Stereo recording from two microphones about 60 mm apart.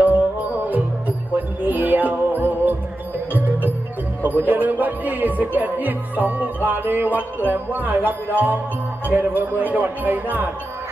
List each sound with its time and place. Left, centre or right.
0.0 s music: right
4.2 s speech: right